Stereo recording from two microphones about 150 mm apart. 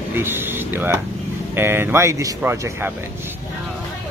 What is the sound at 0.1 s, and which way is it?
Speech, 15° right (ahead or behind).